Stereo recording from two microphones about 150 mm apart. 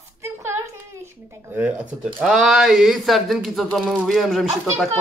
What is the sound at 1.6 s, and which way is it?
Speech, 5° right (ahead or behind).